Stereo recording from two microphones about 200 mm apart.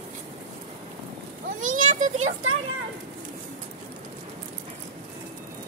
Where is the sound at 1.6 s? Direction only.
40° right (ahead or behind).